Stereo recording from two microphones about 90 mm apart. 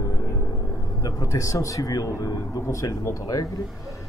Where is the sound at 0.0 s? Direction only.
40° left (ahead or behind).